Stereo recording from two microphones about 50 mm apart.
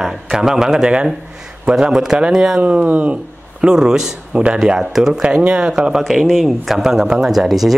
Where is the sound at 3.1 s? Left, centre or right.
Centre.